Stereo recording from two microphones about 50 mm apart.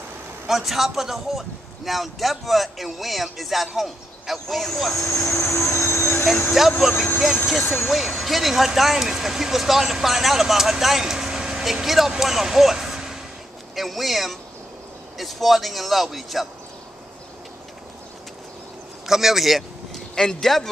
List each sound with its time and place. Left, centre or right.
0.5 s speech: centre
4.9 s speech: left
5.3 s train: left
6.6 s speech: centre
7.6 s speech: left
7.9 s speech: centre
19.0 s speech: centre
20.2 s speech: centre